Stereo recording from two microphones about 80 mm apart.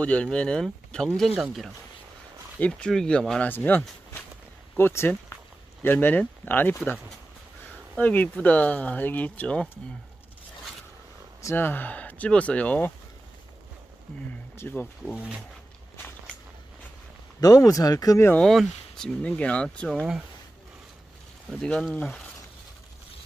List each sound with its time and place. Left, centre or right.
0.0 s speech: centre
2.9 s speech: centre
3.4 s speech: left
8.0 s speech: centre
11.5 s speech: left
14.6 s speech: left
15.1 s speech: centre
17.4 s speech: left
18.4 s speech: centre
19.2 s speech: centre
21.5 s speech: centre